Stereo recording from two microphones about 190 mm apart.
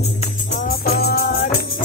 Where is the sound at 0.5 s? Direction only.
50° left (ahead or behind).